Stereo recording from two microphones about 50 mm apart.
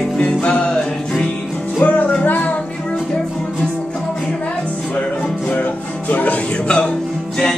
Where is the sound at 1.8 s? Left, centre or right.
Left.